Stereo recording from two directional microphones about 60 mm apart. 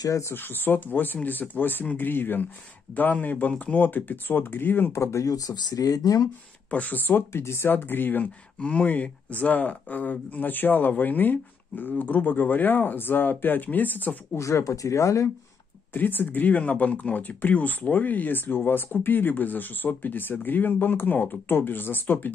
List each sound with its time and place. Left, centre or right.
0.2 s speech: left
4.9 s speech: left
5.2 s speech: left
6.7 s speech: left
8.5 s speech: centre
14.3 s speech: left
15.9 s speech: left